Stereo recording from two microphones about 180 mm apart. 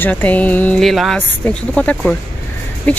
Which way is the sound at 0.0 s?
10° left (ahead or behind).